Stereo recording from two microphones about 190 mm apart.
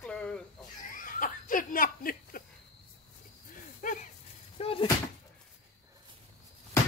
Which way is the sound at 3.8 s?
40° left (ahead or behind).